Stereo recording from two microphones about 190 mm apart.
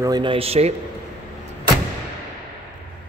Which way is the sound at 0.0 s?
25° right (ahead or behind).